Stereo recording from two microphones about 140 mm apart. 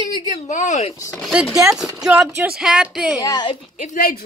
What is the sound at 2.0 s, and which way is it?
Speech, 10° right (ahead or behind).